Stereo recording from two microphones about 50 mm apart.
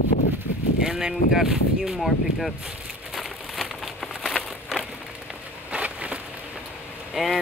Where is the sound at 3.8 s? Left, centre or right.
Centre.